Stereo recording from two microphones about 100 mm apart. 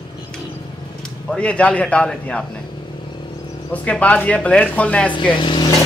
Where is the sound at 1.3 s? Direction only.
10° left (ahead or behind).